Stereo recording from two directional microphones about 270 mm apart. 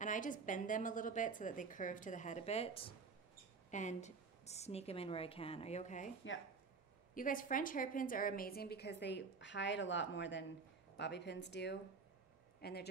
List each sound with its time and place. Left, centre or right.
0.0 s a woman's voice: left
7.2 s a woman's voice: left
12.5 s a sound: left